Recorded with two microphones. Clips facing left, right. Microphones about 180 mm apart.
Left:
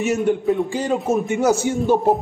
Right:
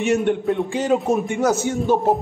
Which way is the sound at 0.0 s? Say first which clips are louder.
Even; centre (ahead or behind).